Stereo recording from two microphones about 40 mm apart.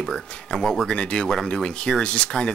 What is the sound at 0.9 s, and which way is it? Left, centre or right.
Speech, left.